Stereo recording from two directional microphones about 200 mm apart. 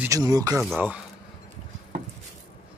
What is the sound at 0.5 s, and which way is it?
Speech, 5° right (ahead or behind).